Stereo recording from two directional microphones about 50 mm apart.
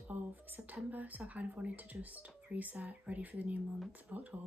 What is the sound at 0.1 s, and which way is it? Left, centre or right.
Speech, right.